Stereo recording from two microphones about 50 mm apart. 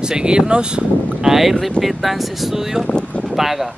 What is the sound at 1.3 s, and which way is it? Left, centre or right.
Speech, centre.